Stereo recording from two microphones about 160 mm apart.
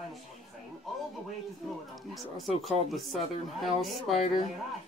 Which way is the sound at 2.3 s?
Centre (ahead or behind).